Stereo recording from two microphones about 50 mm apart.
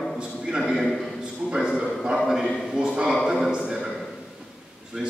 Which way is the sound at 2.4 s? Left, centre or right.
Centre.